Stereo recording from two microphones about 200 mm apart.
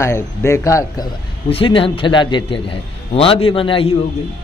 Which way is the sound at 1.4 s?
25° left (ahead or behind).